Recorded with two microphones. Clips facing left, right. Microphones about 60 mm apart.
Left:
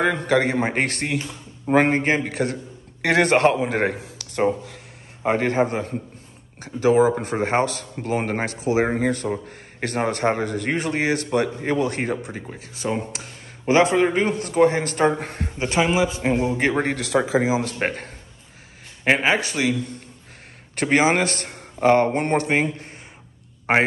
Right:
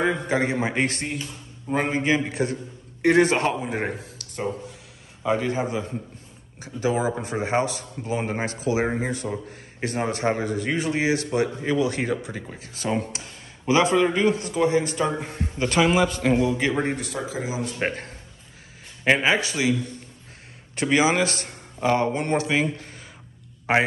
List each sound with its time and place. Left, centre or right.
0.0 s speech: left
3.0 s a man's voice: left
5.2 s a man's voice: left
15.6 s a man's voice: left
15.9 s a man's voice: centre
16.3 s a man's voice: left
16.8 s speech: left
17.8 s a man's voice: left
19.1 s a man's voice: left